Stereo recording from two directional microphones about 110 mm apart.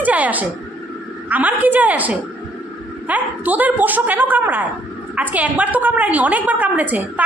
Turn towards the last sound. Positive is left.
turn(degrees=-15)  # may be behind; listen again after turning